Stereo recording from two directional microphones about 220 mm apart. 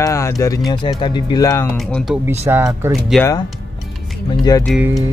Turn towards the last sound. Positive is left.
turn(degrees=-5)  # may be behind; listen again after turning